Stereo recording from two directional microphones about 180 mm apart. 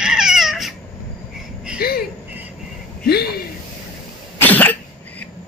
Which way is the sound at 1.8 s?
60° left (ahead or behind).